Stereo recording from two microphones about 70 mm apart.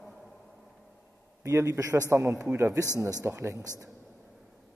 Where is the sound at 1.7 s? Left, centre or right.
Right.